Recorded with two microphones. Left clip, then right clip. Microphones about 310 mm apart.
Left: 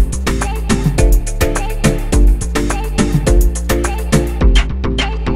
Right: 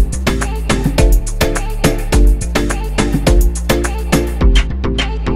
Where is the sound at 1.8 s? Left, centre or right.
Centre.